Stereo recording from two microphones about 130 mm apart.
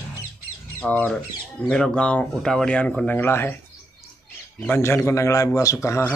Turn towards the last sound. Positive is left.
turn(degrees=20)  # may be behind; listen again after turning